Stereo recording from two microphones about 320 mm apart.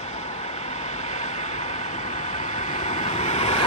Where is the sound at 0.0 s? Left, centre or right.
Centre.